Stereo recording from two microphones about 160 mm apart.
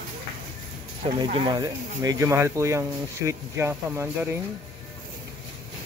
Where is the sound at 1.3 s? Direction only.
30° right (ahead or behind).